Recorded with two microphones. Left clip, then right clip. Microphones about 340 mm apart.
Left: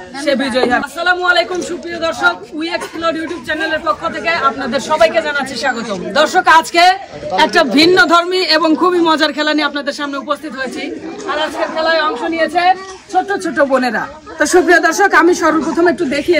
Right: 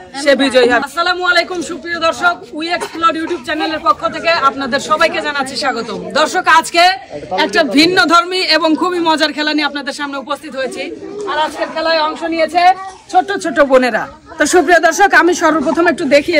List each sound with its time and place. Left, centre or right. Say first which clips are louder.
0.2 s a man's voice: right 4 dB; centre
13.6 s a man's voice: right 4 dB; right